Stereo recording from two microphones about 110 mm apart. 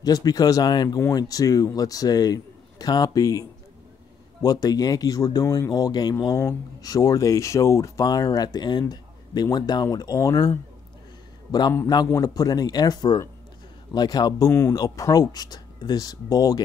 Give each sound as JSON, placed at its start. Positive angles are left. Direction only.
{"t": 0.0, "sound": "speech", "side_deg": 35}
{"t": 12.1, "sound": "speech", "side_deg": 35}
{"t": 14.5, "sound": "speech", "side_deg": 25}